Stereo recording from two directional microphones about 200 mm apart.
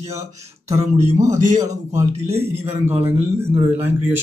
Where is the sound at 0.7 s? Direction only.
30° right (ahead or behind).